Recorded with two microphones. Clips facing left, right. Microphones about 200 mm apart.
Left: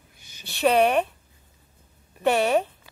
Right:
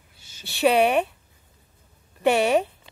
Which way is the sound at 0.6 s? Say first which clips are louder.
Right 1 dB; 10° right (ahead or behind).